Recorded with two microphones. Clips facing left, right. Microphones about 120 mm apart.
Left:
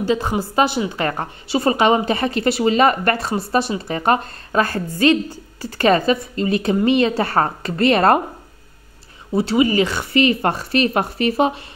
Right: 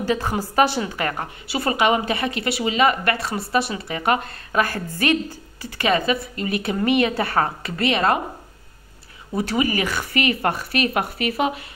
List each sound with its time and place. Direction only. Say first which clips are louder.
0.0 s a woman's voice: left 3 dB; 20° left (ahead or behind)
1.0 s a woman's voice: left 3 dB; 30° left (ahead or behind)
9.4 s speech: left 5 dB; 25° left (ahead or behind)